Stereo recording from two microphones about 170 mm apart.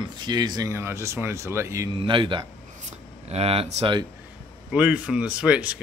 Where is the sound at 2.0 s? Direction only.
30° right (ahead or behind).